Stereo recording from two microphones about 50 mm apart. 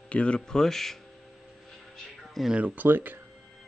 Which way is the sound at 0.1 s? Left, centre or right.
Left.